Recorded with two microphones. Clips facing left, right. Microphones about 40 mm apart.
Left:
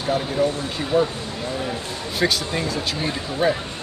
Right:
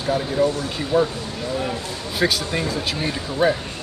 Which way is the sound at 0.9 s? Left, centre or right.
Right.